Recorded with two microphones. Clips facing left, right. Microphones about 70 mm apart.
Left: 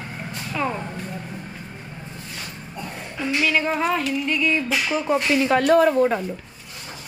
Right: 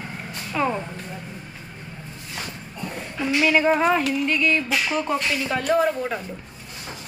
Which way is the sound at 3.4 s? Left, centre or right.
Centre.